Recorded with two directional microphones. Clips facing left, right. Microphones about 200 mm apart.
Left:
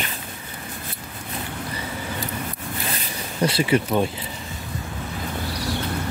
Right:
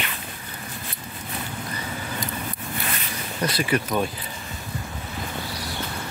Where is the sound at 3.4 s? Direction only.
30° left (ahead or behind).